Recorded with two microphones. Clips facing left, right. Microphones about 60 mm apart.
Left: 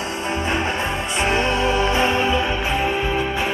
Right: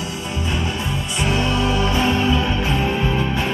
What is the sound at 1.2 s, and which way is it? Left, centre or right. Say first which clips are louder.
Music: left 1 dB; left.